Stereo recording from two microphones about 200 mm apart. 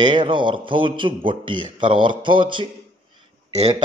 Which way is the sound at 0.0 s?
25° right (ahead or behind).